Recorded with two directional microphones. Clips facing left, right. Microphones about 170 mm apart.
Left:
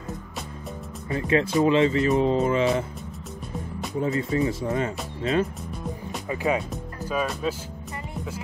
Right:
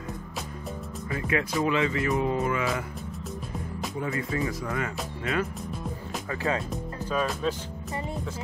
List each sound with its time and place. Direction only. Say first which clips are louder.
1.1 s speech: left 6 dB; 30° left (ahead or behind)
4.0 s speech: left 6 dB; 25° left (ahead or behind)
6.3 s speech: left 4 dB; 15° left (ahead or behind)
6.7 s speech: left 1 dB; 5° left (ahead or behind)